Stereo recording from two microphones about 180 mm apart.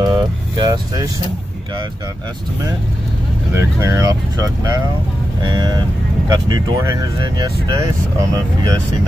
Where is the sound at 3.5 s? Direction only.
15° right (ahead or behind).